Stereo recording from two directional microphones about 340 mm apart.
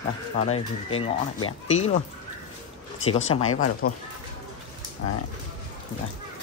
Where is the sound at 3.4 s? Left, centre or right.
Left.